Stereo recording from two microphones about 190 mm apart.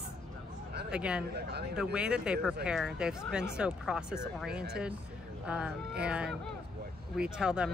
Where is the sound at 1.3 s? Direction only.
55° right (ahead or behind).